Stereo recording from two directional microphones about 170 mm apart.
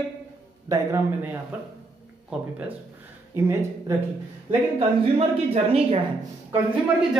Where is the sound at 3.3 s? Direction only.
15° right (ahead or behind).